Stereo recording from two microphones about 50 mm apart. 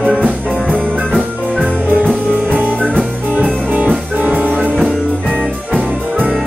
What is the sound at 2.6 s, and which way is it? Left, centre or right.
Music, right.